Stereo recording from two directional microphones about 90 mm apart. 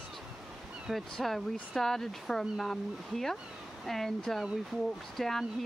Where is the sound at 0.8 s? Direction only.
Centre (ahead or behind).